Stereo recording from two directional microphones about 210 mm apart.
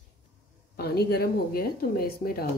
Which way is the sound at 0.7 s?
50° left (ahead or behind).